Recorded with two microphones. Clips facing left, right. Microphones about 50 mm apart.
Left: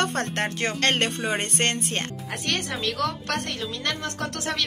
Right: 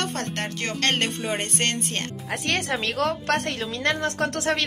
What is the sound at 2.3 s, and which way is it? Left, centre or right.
A woman's voice, right.